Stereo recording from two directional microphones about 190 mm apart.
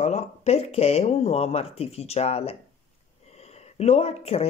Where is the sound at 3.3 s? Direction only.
35° left (ahead or behind).